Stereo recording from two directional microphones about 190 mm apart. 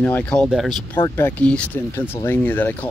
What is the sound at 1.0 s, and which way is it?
Speech, 10° left (ahead or behind).